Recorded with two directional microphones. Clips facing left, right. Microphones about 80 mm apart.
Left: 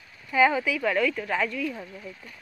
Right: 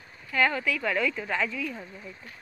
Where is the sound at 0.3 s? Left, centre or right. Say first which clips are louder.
Left 4 dB; centre.